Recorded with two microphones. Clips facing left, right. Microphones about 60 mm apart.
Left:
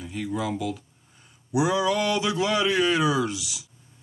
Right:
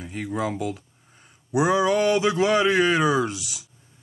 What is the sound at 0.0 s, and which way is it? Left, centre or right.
Speech, right.